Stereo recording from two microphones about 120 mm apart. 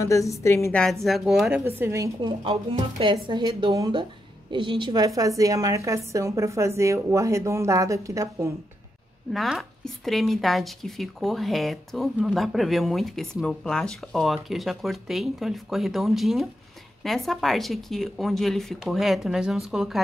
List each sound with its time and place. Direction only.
0.0 s a woman's voice: 25° left (ahead or behind)
1.0 s speech: centre (ahead or behind)
1.6 s a woman's voice: 20° right (ahead or behind)
2.2 s a woman's voice: 45° right (ahead or behind); by 8.5 s 25° right (ahead or behind)
9.3 s speech: centre (ahead or behind)